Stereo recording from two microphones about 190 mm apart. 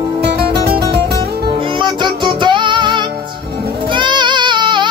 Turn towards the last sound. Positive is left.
turn(degrees=-25)  # may be behind; listen again after turning